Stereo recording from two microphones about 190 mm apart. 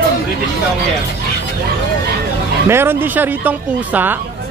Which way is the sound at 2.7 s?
10° right (ahead or behind).